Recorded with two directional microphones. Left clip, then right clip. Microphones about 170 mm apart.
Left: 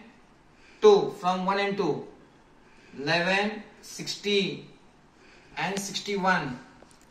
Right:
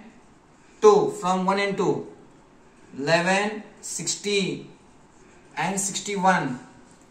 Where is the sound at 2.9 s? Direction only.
15° left (ahead or behind).